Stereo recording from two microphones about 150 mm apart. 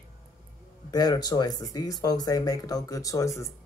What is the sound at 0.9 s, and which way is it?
Speech, 25° left (ahead or behind).